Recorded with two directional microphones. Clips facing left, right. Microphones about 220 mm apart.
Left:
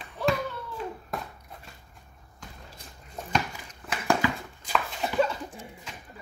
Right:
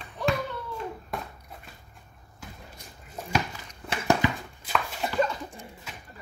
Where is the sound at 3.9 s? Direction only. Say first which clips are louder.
Right 2 dB; 20° right (ahead or behind).